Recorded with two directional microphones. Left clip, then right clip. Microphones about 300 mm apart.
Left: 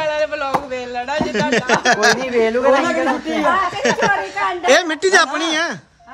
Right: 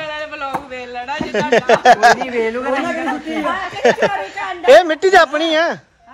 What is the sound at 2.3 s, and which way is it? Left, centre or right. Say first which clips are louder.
Speech: left 4 dB; left.